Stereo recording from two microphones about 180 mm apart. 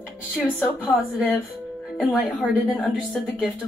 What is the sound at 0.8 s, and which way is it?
A woman's voice, centre (ahead or behind).